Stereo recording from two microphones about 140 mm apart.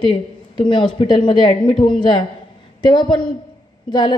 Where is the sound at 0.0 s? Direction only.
35° left (ahead or behind).